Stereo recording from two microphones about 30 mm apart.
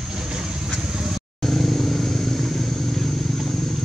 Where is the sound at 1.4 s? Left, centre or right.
Centre.